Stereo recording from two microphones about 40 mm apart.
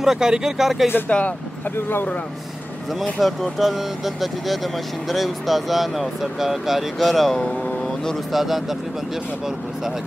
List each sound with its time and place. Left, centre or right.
0.0 s speech: centre
1.1 s speech: left
3.0 s speech: centre
8.3 s speech: centre